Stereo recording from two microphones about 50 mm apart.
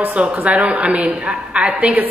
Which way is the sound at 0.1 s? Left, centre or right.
Right.